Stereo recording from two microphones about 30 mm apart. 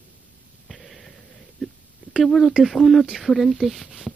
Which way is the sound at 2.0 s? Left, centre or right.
Right.